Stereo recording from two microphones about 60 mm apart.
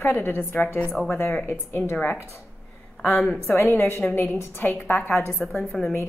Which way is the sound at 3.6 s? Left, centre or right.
Left.